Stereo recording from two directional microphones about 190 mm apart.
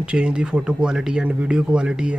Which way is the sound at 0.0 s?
5° right (ahead or behind).